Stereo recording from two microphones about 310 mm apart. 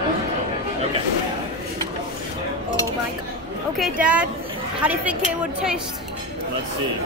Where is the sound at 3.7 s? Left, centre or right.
Centre.